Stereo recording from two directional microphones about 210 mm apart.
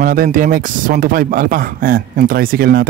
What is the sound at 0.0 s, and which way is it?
Speech, 40° right (ahead or behind).